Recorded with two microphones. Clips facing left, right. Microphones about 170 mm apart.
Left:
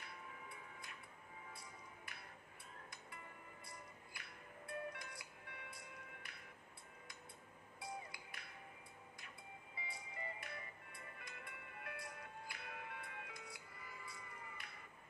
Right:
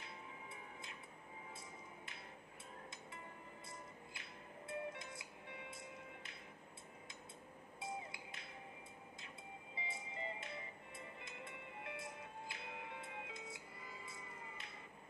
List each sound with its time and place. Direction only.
0.0 s tick-tock: 25° right (ahead or behind)
3.6 s music: 25° right (ahead or behind)
7.8 s music: 25° right (ahead or behind)
9.8 s music: 25° right (ahead or behind)